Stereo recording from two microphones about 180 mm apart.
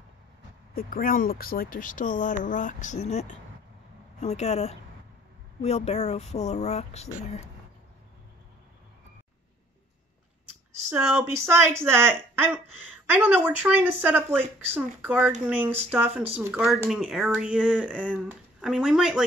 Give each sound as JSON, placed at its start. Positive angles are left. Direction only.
{"t": 0.7, "sound": "speech", "side_deg": 55}
{"t": 10.9, "sound": "a woman's voice", "side_deg": -10}